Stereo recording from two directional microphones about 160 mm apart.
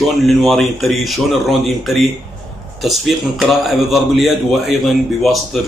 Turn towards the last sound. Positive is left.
turn(degrees=0)  # may be behind; listen again after turning